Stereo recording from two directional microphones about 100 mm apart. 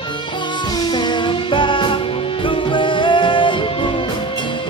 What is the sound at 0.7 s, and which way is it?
Music, 45° left (ahead or behind).